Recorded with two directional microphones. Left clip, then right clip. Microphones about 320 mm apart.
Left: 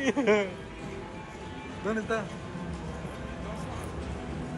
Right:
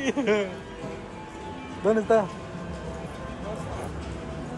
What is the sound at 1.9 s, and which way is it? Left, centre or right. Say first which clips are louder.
Speech: right 10 dB; right.